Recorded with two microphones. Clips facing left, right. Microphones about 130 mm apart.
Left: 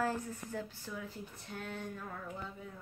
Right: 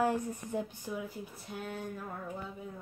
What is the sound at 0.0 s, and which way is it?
Speech, 20° right (ahead or behind).